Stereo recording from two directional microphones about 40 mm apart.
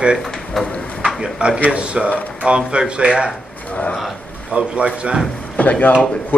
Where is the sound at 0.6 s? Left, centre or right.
Centre.